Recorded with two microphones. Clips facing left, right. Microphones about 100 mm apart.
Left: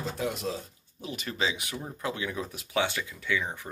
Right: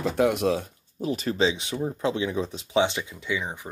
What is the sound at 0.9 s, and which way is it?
Speech, 40° right (ahead or behind).